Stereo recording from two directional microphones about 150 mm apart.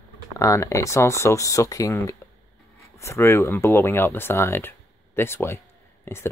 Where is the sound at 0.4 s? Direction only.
20° left (ahead or behind).